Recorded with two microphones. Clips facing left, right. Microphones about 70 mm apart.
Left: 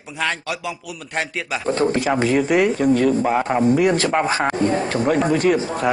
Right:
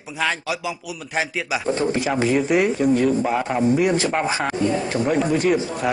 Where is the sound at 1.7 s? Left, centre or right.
Left.